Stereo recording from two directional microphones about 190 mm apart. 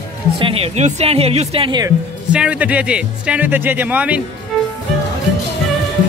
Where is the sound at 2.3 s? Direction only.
5° right (ahead or behind).